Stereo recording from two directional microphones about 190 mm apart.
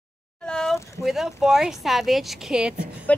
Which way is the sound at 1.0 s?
Centre (ahead or behind).